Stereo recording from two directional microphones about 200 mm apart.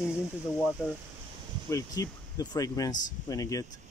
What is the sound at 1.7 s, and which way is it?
Speech, 15° left (ahead or behind).